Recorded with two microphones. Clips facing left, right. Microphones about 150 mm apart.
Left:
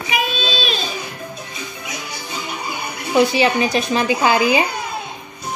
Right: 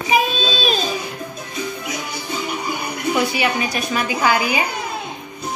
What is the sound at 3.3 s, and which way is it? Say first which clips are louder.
A woman's voice: left 4 dB; 25° left (ahead or behind).